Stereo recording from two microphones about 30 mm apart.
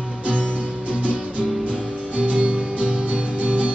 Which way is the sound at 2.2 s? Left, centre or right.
Right.